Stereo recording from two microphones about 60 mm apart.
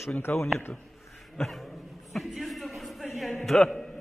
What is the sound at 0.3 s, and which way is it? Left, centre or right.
Speech, left.